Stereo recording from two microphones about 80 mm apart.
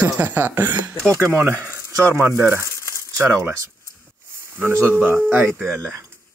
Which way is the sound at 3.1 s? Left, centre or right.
Right.